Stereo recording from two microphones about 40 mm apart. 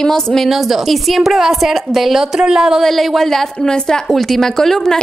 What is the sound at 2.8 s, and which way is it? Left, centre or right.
Speech, centre.